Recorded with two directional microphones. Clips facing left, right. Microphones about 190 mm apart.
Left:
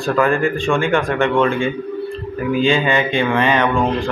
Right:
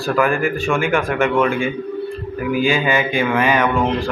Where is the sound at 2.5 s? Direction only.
25° left (ahead or behind).